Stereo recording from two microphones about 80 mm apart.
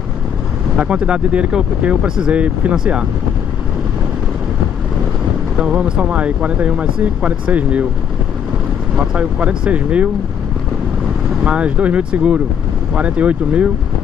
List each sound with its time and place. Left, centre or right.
0.7 s speech: centre
5.6 s speech: centre
8.9 s speech: centre
11.4 s speech: centre